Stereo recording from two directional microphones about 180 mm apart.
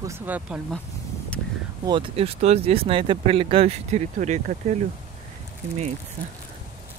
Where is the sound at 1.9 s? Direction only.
30° right (ahead or behind).